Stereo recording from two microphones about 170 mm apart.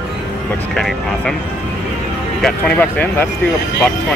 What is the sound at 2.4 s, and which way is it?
Speech, 5° left (ahead or behind).